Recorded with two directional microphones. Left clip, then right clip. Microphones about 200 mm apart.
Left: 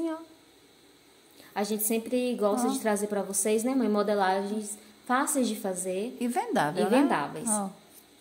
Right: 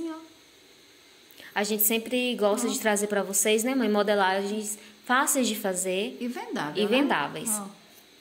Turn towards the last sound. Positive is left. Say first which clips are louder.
# right 2 dB
turn(degrees=0)  # may be behind; listen again after turning